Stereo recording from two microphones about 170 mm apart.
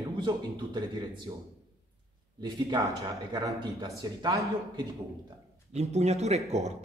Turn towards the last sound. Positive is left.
turn(degrees=-40)  # may be behind; listen again after turning